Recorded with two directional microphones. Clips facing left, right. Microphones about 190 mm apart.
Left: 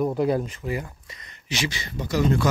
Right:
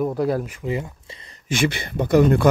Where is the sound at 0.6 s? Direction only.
20° right (ahead or behind).